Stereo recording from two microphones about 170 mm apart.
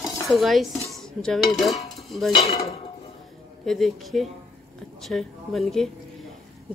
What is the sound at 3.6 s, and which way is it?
A woman's voice, centre (ahead or behind).